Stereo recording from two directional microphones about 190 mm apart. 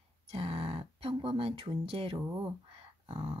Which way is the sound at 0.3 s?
30° right (ahead or behind).